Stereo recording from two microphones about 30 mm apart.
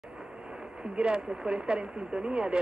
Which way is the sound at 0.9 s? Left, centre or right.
Right.